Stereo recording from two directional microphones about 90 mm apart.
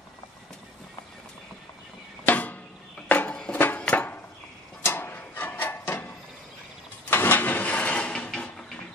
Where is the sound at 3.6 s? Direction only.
15° left (ahead or behind).